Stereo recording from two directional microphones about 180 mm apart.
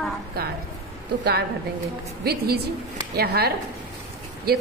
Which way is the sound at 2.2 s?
60° right (ahead or behind).